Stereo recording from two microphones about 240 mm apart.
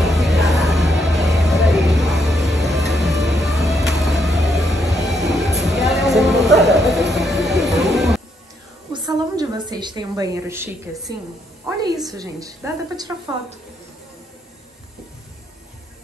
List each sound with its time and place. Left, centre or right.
0.0 s music: centre
4.0 s vehicle: centre
5.0 s train: centre
5.4 s a sound: centre
8.9 s a sound: centre
11.6 s a woman's voice: centre